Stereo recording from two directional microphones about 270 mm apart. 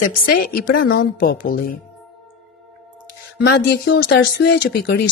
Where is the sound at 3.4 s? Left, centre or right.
Left.